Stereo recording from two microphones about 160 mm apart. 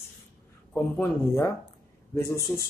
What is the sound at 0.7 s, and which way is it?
Speech, 15° left (ahead or behind).